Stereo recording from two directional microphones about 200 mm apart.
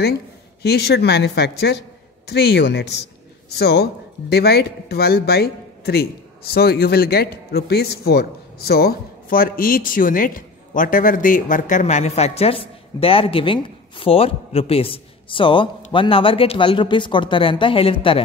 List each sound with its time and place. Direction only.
0.6 s a man's voice: 55° left (ahead or behind); by 18.2 s 30° left (ahead or behind)